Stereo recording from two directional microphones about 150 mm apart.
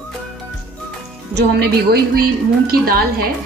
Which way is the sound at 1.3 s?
90° right.